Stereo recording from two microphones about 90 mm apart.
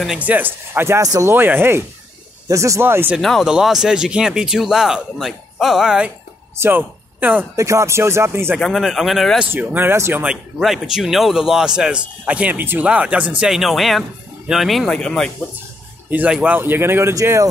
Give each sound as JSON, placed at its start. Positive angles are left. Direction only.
{"t": 0.2, "sound": "speech", "side_deg": -20}
{"t": 1.0, "sound": "speech", "side_deg": -40}
{"t": 1.3, "sound": "speech", "side_deg": -25}
{"t": 2.4, "sound": "speech", "side_deg": -35}
{"t": 3.2, "sound": "a man's voice", "side_deg": 5}
{"t": 6.5, "sound": "speech", "side_deg": -25}
{"t": 7.5, "sound": "speech", "side_deg": -35}
{"t": 8.5, "sound": "speech", "side_deg": 0}
{"t": 9.5, "sound": "speech", "side_deg": -20}
{"t": 10.2, "sound": "a man's voice", "side_deg": -5}
{"t": 13.5, "sound": "speech", "side_deg": 0}
{"t": 16.1, "sound": "a man's voice", "side_deg": -20}